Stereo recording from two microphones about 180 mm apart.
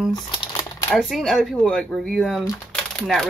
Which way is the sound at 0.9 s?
Centre (ahead or behind).